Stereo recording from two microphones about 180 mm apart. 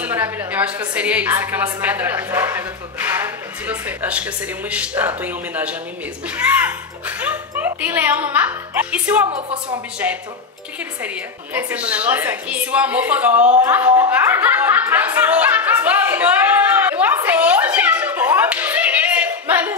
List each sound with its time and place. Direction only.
0.0 s a woman's voice: 10° right (ahead or behind)
9.3 s a woman's voice: 25° right (ahead or behind)
10.0 s a woman's voice: 10° right (ahead or behind)
11.5 s a woman's voice: 10° right (ahead or behind)
13.6 s a sound: 10° right (ahead or behind)